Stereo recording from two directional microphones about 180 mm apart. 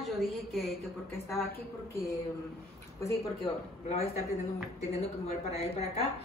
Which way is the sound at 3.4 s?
35° left (ahead or behind).